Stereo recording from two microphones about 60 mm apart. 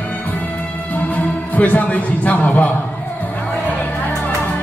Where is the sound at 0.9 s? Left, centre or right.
Left.